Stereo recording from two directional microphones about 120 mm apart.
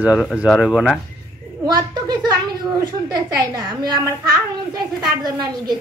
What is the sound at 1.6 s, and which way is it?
Speech, 35° right (ahead or behind).